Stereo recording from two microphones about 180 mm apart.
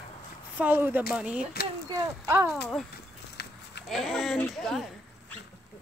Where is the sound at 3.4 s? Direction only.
65° left (ahead or behind).